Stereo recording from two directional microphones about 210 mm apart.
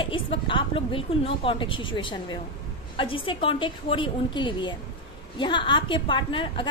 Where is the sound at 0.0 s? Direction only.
25° left (ahead or behind).